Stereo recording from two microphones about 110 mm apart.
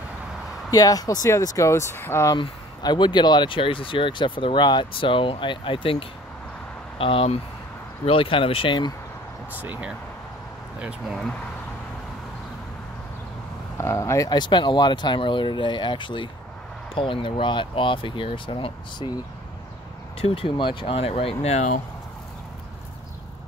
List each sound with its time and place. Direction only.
0.7 s speech: 35° left (ahead or behind)
2.3 s speech: 40° left (ahead or behind)
9.5 s speech: 15° right (ahead or behind)
13.7 s speech: 25° left (ahead or behind); by 19.1 s 45° left (ahead or behind)
20.2 s speech: 60° left (ahead or behind)
20.9 s speech: 65° left (ahead or behind); by 21.7 s 85° left